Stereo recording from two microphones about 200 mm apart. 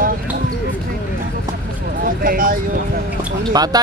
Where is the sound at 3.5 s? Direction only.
20° right (ahead or behind).